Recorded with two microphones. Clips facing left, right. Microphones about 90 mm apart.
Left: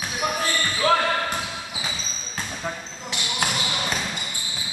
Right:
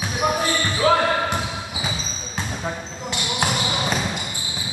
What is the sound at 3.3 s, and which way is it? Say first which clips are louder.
Basketball bounce: right 3 dB; 5° right (ahead or behind).